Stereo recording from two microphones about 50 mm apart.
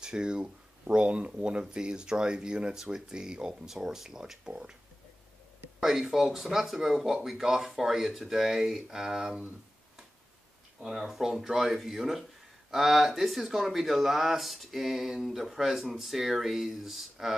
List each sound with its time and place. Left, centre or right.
0.0 s speech: centre
5.8 s speech: centre
10.8 s speech: centre